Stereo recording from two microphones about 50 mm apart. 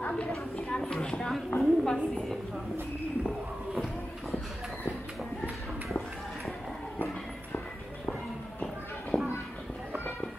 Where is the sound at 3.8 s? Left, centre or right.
Centre.